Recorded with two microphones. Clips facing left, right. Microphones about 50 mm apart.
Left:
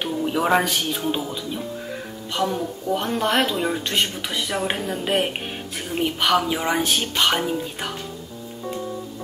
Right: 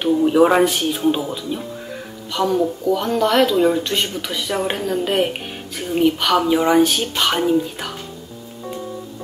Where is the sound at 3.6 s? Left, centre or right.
Centre.